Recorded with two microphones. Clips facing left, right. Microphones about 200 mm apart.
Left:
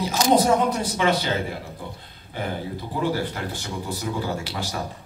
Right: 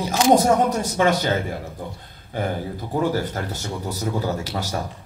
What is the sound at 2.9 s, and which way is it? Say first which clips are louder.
Speech: right 4 dB; 45° right (ahead or behind).